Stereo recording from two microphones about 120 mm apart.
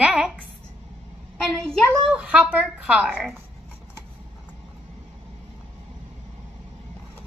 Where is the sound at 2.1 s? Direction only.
10° right (ahead or behind).